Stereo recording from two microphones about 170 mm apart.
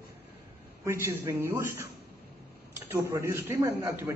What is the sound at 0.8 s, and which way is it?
A man's voice, 15° right (ahead or behind).